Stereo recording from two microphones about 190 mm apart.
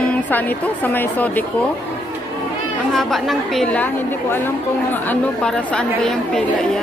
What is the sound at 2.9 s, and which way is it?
Speech, centre (ahead or behind).